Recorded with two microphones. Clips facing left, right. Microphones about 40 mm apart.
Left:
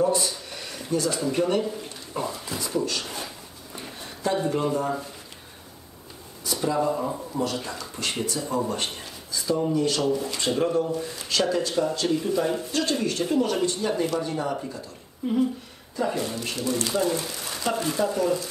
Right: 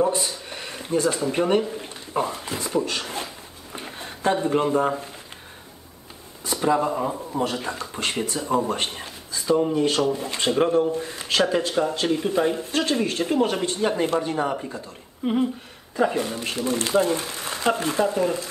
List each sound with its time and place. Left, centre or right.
0.0 s speech: right
1.8 s a sound: right
6.4 s a sound: right
7.3 s speech: right
15.2 s speech: right
16.0 s speech: right